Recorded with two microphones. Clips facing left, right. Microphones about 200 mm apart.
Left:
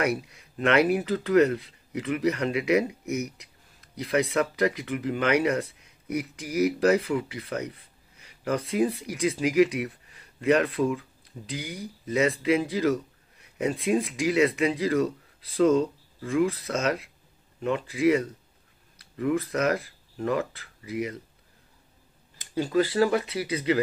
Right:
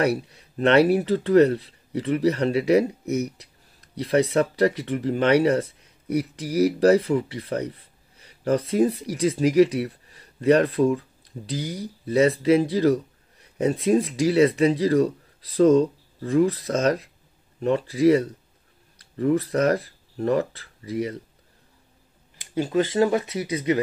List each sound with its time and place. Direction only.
0.0 s speech: 35° right (ahead or behind)
22.5 s speech: 20° right (ahead or behind)